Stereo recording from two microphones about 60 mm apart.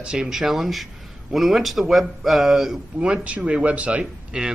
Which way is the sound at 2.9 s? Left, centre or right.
Centre.